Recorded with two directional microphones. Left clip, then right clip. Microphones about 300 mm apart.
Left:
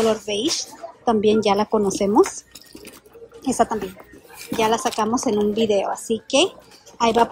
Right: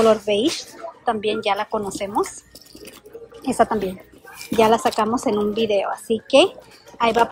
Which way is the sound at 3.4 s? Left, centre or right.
Centre.